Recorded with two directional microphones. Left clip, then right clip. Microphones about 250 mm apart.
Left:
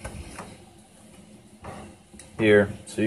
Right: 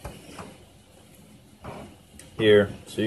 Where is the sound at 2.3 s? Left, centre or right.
Centre.